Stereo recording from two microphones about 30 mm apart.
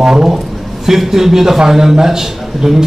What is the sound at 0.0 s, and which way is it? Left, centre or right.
A man's voice, centre.